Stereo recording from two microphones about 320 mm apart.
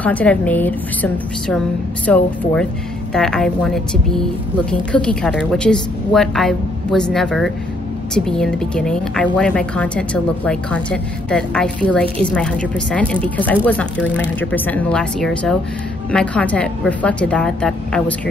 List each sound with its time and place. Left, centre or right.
0.0 s a woman's voice: centre